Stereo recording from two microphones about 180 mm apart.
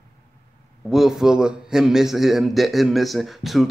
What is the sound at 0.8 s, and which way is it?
A man's voice, centre (ahead or behind).